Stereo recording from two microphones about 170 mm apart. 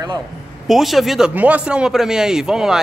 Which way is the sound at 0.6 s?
Centre (ahead or behind).